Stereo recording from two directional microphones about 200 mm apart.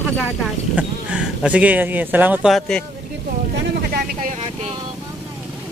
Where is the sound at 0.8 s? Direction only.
5° right (ahead or behind).